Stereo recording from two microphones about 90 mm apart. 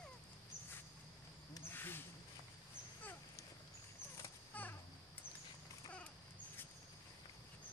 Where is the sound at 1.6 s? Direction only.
25° left (ahead or behind).